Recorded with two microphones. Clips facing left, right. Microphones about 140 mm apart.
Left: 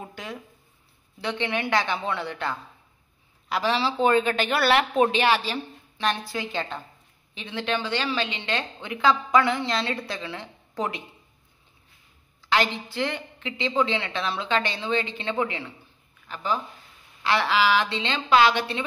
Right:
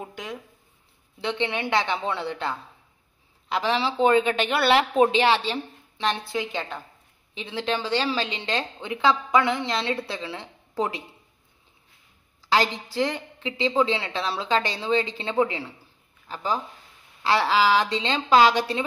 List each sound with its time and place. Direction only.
0.0 s a woman's voice: 20° right (ahead or behind)
7.5 s a woman's voice: 35° right (ahead or behind)
8.8 s a woman's voice: 20° right (ahead or behind)
12.4 s a woman's voice: 35° right (ahead or behind)
17.2 s a woman's voice: 35° right (ahead or behind)